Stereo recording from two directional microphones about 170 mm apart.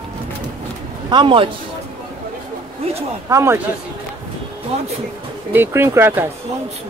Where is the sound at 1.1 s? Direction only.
30° right (ahead or behind).